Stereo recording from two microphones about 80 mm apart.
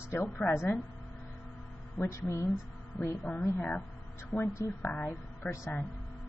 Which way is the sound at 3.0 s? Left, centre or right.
Left.